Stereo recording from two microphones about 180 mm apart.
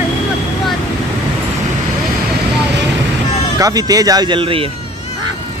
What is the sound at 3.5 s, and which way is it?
Speech, 20° right (ahead or behind).